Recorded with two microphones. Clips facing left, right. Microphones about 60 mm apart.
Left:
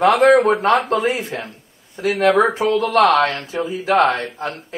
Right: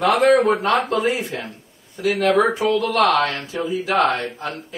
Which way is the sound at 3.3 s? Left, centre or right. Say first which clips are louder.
Left 2 dB; left.